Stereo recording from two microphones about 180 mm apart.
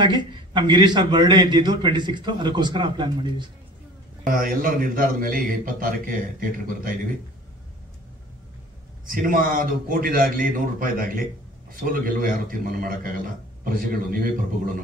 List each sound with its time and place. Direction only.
0.0 s a man's voice: 25° right (ahead or behind)
4.3 s a man's voice: 50° right (ahead or behind)
9.0 s a man's voice: 50° right (ahead or behind)